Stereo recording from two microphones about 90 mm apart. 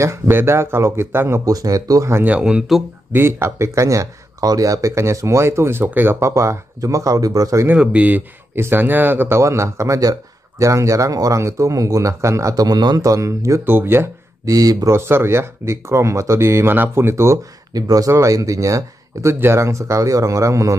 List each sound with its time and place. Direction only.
0.0 s speech: 30° right (ahead or behind)
1.4 s a man's voice: 40° right (ahead or behind)
2.2 s speech: 15° right (ahead or behind)
3.1 s a man's voice: 25° right (ahead or behind); by 7.6 s 40° right (ahead or behind)
7.6 s a man's voice: 15° right (ahead or behind); by 12.6 s 35° right (ahead or behind)
12.6 s a man's voice: 50° right (ahead or behind); by 14.1 s 25° right (ahead or behind)
14.4 s speech: 45° right (ahead or behind)
14.9 s speech: 25° right (ahead or behind)
17.7 s a man's voice: 40° right (ahead or behind)